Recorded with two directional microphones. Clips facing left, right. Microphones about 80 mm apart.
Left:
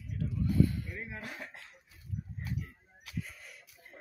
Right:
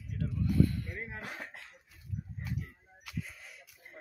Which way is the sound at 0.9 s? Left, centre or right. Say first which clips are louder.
Right 1 dB; right.